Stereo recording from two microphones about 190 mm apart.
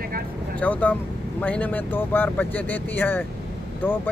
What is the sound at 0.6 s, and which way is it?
Speech, 10° left (ahead or behind).